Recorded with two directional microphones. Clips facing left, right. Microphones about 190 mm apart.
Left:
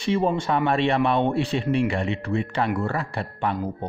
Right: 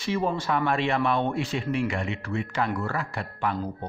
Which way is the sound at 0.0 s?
25° left (ahead or behind).